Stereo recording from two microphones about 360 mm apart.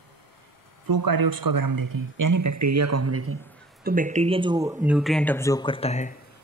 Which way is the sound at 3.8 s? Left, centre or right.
Right.